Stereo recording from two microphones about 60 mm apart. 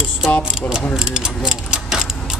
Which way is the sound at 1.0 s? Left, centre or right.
Centre.